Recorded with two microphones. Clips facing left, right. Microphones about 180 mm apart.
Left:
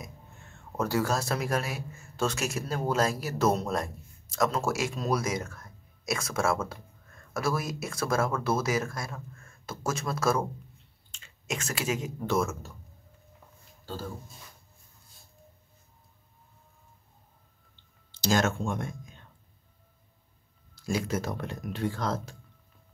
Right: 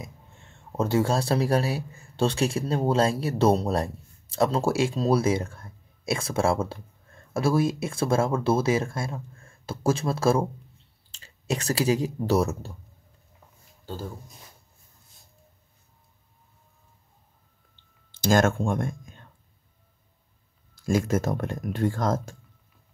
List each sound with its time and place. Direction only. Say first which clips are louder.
0.0 s speech: right 2 dB; 25° right (ahead or behind)
18.1 s speech: right 5 dB; 50° right (ahead or behind)
20.7 s speech: right 6 dB; 50° right (ahead or behind)